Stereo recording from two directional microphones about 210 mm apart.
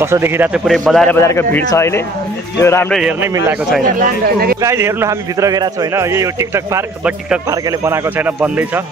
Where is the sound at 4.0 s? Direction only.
45° right (ahead or behind).